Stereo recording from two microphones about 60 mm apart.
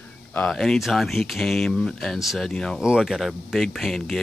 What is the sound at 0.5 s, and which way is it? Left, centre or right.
Speech, centre.